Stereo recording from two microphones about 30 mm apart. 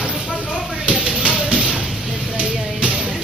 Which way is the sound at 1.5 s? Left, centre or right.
Right.